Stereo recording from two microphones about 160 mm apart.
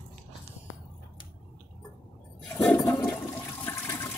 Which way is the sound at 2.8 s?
20° left (ahead or behind).